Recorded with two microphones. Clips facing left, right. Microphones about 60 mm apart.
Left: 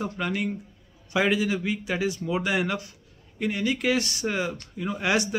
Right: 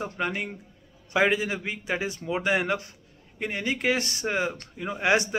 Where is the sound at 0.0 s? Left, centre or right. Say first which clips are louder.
Left 1 dB; right.